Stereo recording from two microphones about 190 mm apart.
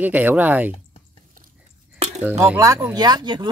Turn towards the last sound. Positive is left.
turn(degrees=-20)  # may be behind; listen again after turning